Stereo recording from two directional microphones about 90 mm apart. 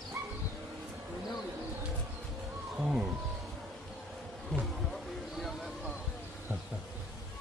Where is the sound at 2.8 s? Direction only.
10° right (ahead or behind).